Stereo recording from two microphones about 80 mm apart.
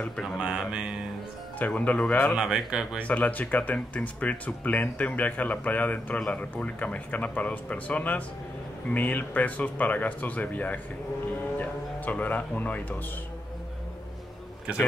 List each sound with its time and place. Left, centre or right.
0.4 s speech: centre
1.7 s speech: centre
2.3 s speech: centre
3.0 s speech: centre
11.5 s music: centre